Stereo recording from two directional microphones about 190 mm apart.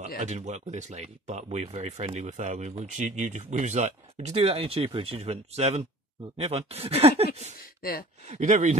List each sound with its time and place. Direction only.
0.2 s speech: 40° right (ahead or behind)
8.3 s speech: 40° right (ahead or behind)